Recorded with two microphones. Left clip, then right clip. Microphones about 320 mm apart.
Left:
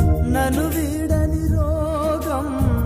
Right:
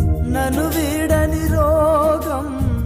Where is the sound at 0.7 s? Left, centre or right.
Right.